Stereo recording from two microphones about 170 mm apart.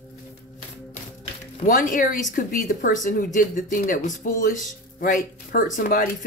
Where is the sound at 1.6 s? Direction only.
50° left (ahead or behind).